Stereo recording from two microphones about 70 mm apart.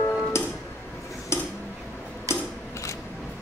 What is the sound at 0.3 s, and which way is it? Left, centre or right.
Music, left.